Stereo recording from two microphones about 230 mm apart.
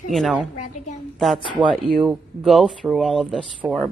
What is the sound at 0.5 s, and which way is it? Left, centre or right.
Speech, left.